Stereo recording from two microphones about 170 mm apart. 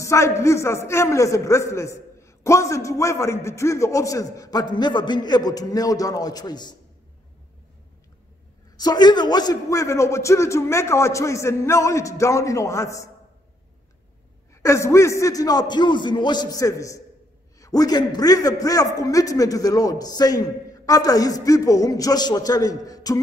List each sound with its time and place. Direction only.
0.0 s a man's voice: 15° left (ahead or behind)
8.7 s a man's voice: 25° left (ahead or behind)
14.5 s a man's voice: 15° left (ahead or behind)